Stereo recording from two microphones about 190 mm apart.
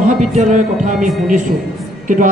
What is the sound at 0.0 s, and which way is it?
Music, 40° right (ahead or behind).